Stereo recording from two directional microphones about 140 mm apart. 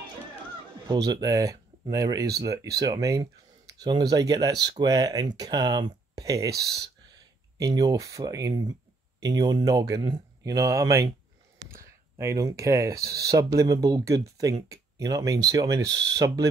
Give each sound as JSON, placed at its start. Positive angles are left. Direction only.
{"t": 0.8, "sound": "speech", "side_deg": -25}